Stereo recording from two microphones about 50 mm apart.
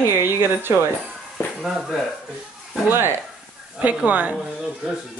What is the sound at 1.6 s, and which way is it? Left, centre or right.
Speech, centre.